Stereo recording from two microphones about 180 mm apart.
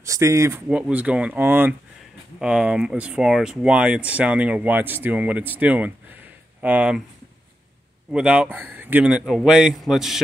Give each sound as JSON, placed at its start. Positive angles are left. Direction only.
{"t": 0.0, "sound": "speech", "side_deg": -15}
{"t": 0.7, "sound": "speech", "side_deg": -5}
{"t": 8.1, "sound": "a man's voice", "side_deg": -5}